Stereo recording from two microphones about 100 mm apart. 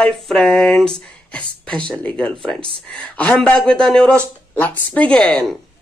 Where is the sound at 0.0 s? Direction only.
Centre (ahead or behind).